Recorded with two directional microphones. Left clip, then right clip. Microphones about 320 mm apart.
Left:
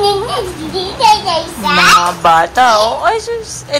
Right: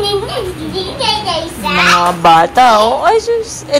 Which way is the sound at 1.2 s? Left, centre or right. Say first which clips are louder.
Left 2 dB; left.